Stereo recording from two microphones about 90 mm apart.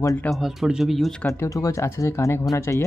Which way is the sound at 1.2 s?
35° left (ahead or behind).